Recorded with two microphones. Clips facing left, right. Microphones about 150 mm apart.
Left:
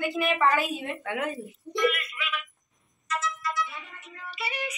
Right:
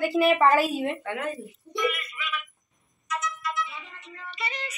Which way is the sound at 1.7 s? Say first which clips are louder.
Left 2 dB; centre (ahead or behind).